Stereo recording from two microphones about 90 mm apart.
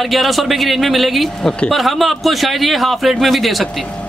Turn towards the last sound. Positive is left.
turn(degrees=0)  # may be behind; listen again after turning